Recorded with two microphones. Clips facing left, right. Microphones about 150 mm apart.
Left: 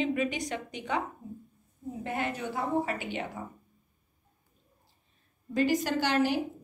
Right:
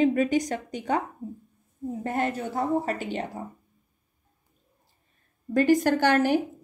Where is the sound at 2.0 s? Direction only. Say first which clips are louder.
Right 5 dB; 45° right (ahead or behind).